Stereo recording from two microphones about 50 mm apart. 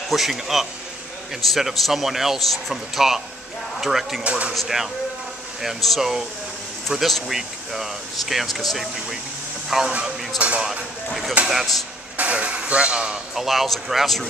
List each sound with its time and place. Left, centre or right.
0.1 s a man's voice: centre
4.2 s speech: right
4.6 s a man's voice: centre
10.4 s speech: right
13.3 s a man's voice: centre